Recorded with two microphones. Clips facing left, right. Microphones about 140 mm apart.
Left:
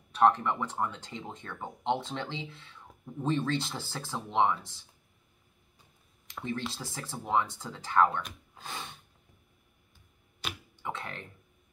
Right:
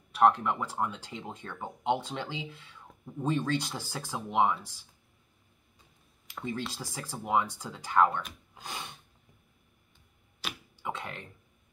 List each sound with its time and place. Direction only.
0.1 s speech: 10° right (ahead or behind)
6.2 s speech: 10° right (ahead or behind)
10.8 s speech: 10° right (ahead or behind)